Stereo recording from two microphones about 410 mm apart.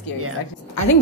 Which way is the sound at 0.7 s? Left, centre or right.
Left.